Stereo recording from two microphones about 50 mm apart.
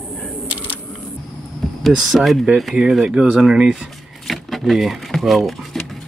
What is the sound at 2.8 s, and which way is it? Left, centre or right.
Speech, centre.